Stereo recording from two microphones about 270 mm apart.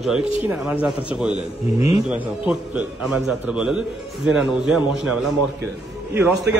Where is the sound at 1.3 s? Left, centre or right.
Left.